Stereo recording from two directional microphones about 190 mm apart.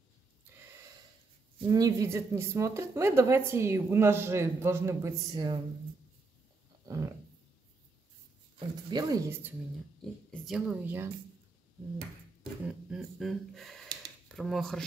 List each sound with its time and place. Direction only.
1.7 s speech: 20° right (ahead or behind)
6.9 s roaring cats: 15° right (ahead or behind)
8.5 s speech: 20° right (ahead or behind)
10.3 s speech: centre (ahead or behind)
12.6 s speech: centre (ahead or behind)